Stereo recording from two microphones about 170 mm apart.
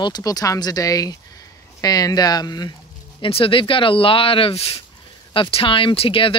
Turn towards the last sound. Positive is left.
turn(degrees=30)  # may be behind; listen again after turning